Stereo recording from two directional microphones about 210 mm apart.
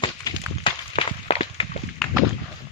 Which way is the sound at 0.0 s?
25° left (ahead or behind).